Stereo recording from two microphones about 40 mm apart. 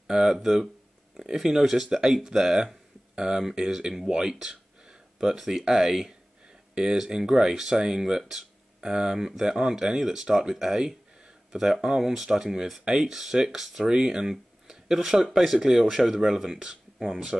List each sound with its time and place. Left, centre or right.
0.0 s speech: centre